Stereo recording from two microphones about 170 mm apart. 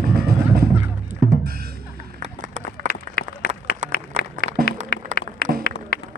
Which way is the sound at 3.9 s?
60° left (ahead or behind).